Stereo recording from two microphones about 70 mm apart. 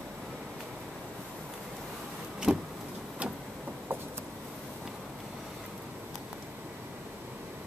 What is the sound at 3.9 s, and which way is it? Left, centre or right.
Vehicle, right.